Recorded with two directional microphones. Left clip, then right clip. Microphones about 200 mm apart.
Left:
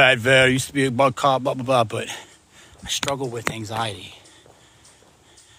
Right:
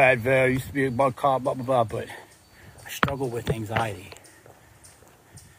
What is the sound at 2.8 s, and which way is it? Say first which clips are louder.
Speech: left 2 dB; 15° left (ahead or behind).